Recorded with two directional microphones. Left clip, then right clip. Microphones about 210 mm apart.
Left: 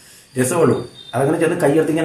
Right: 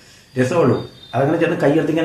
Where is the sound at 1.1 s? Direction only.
10° left (ahead or behind).